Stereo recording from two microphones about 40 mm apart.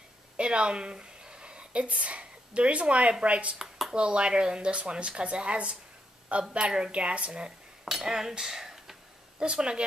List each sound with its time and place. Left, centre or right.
0.4 s a woman's voice: right
3.5 s a sound: centre
3.9 s speech: right
7.8 s speech: centre